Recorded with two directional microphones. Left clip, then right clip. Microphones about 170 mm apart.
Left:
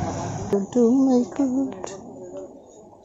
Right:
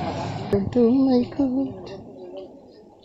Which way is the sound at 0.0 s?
45° right (ahead or behind).